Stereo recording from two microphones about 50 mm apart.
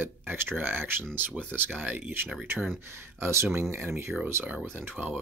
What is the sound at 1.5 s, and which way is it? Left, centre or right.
Speech, right.